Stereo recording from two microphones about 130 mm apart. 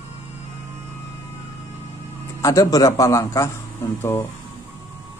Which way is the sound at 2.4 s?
25° left (ahead or behind).